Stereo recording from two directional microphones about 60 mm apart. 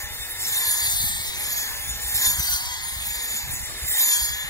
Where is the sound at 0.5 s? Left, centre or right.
Left.